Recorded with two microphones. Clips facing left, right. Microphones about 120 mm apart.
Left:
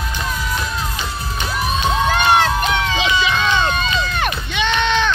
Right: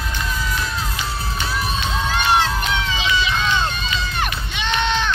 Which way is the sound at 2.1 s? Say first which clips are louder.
Left 2 dB; 55° left (ahead or behind).